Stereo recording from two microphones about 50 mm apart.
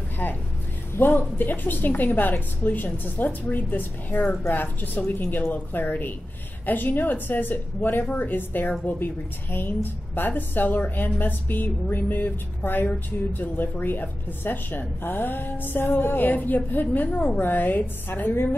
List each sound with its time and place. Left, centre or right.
0.2 s a woman's voice: left